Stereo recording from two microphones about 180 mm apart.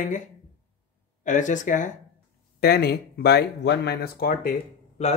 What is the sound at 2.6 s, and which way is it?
Speech, 60° left (ahead or behind).